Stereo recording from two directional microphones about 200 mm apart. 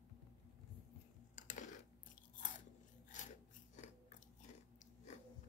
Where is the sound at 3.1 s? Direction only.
40° left (ahead or behind).